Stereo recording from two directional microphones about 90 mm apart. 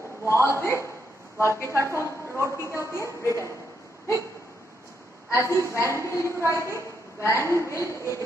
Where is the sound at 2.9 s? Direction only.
30° left (ahead or behind).